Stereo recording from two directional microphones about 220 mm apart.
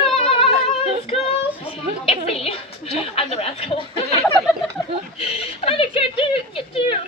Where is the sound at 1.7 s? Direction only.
25° left (ahead or behind).